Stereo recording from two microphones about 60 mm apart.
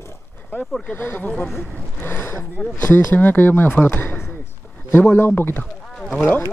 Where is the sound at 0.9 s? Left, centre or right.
Left.